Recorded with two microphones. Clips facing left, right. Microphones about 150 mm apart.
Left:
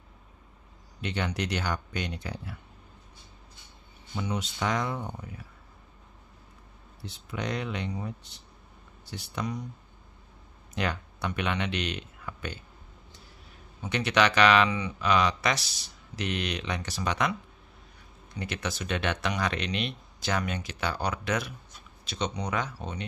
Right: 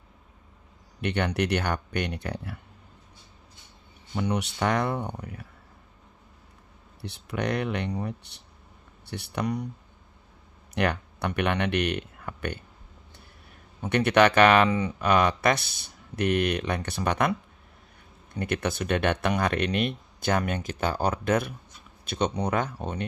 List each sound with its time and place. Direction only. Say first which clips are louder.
1.0 s speech: right 5 dB; 60° right (ahead or behind)
4.1 s speech: right 5 dB; 60° right (ahead or behind)
7.0 s speech: right 5 dB; 65° right (ahead or behind)
10.7 s speech: right 5 dB; 60° right (ahead or behind)
13.8 s speech: right 5 dB; 55° right (ahead or behind)